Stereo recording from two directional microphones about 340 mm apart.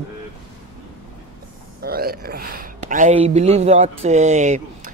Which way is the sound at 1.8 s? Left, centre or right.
Right.